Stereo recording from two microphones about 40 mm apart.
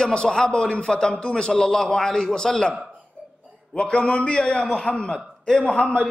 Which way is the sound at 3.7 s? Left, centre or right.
Left.